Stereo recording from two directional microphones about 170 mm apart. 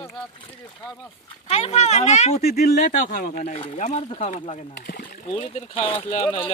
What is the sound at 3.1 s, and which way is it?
Speech, 45° left (ahead or behind).